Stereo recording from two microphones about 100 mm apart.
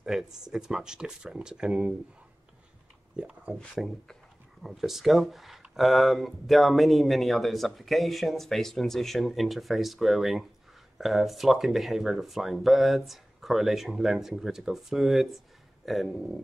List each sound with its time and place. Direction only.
0.0 s speech: 5° right (ahead or behind)
3.2 s speech: 10° right (ahead or behind)
3.5 s speech: 5° left (ahead or behind)